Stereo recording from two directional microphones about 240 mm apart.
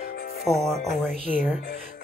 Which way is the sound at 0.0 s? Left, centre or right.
Left.